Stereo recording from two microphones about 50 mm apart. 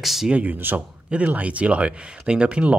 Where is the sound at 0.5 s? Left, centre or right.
Right.